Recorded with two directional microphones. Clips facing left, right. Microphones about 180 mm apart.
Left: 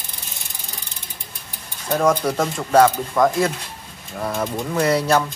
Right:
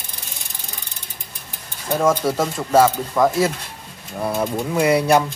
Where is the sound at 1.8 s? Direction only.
Centre (ahead or behind).